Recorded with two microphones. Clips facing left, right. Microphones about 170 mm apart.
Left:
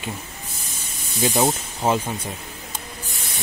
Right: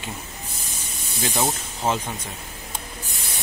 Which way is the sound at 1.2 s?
10° left (ahead or behind).